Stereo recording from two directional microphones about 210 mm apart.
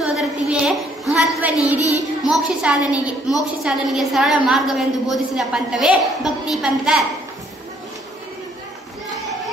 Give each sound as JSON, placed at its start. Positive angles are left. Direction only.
{"t": 0.0, "sound": "a sound", "side_deg": 0}
{"t": 1.4, "sound": "a woman's voice", "side_deg": -5}
{"t": 1.8, "sound": "child singing", "side_deg": 15}
{"t": 2.2, "sound": "a woman's voice", "side_deg": -5}